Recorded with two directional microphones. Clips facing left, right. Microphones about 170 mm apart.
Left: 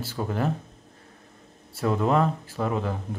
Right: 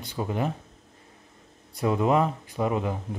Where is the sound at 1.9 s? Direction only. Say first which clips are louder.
Even; 5° right (ahead or behind).